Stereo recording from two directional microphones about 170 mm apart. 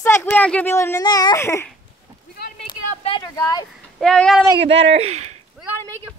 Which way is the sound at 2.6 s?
30° left (ahead or behind).